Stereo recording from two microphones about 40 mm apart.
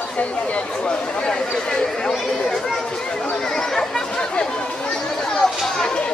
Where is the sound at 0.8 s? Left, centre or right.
Centre.